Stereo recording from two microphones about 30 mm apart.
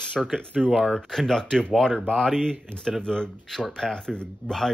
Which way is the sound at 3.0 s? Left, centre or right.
Left.